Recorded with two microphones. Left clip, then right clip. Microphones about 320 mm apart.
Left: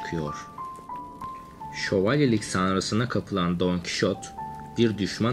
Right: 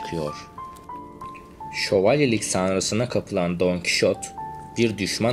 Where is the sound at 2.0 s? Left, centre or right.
Centre.